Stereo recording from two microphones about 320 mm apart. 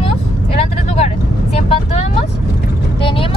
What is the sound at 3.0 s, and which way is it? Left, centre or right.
Vehicle, centre.